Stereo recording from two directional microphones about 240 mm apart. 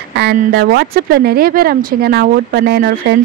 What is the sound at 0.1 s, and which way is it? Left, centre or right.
Speech, right.